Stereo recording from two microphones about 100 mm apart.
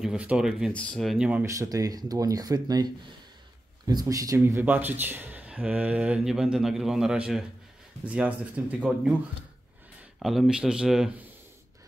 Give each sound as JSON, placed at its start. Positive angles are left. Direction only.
{"t": 0.0, "sound": "speech", "side_deg": -10}
{"t": 0.7, "sound": "speech", "side_deg": 15}
{"t": 1.0, "sound": "speech", "side_deg": -10}
{"t": 1.4, "sound": "speech", "side_deg": -35}
{"t": 4.6, "sound": "speech", "side_deg": -20}
{"t": 10.1, "sound": "speech", "side_deg": 0}